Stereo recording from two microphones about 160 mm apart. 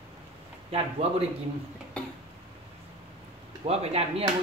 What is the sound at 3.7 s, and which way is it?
Speech, 40° right (ahead or behind).